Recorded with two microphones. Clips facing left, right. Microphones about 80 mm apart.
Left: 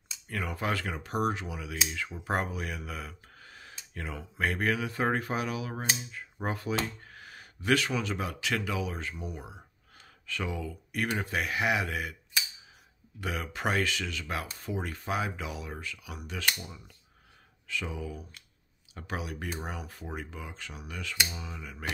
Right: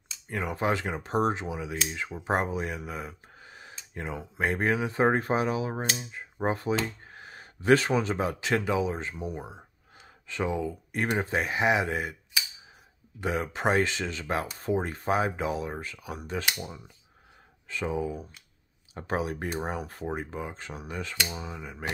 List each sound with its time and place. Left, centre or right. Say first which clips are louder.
0.3 s speech: right 4 dB; right
13.2 s speech: right 5 dB; right